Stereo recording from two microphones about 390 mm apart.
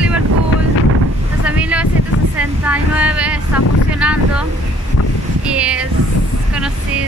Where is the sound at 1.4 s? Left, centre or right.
Centre.